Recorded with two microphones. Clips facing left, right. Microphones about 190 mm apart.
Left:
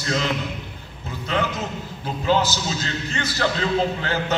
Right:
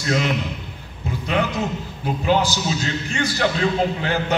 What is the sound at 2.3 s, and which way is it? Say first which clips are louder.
A man's voice: right 1 dB; 15° right (ahead or behind).